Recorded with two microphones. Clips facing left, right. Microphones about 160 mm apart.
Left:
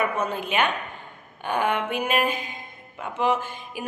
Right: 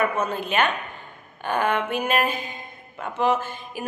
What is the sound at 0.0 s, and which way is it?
Speech, 10° left (ahead or behind).